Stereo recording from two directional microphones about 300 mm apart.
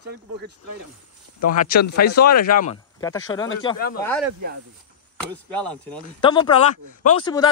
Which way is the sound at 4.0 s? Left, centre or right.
Centre.